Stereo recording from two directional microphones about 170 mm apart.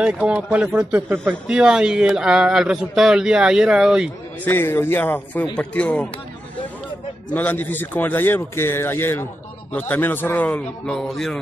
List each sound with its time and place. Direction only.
0.0 s speech: 5° right (ahead or behind)
4.5 s a man's voice: 15° left (ahead or behind)
7.3 s a man's voice: 10° left (ahead or behind)